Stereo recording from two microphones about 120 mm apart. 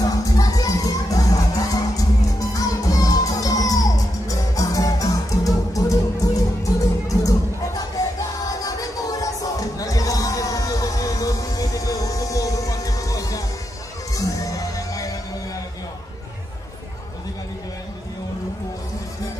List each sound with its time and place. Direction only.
0.0 s music: 30° left (ahead or behind)